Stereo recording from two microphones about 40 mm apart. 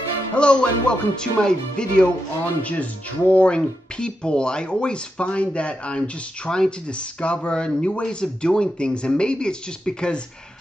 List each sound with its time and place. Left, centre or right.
0.3 s speech: left
2.6 s speech: left